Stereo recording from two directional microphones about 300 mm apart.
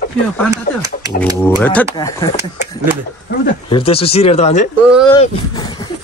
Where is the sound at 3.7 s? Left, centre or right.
Centre.